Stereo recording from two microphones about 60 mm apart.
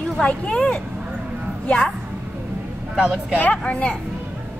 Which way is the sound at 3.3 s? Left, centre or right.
Left.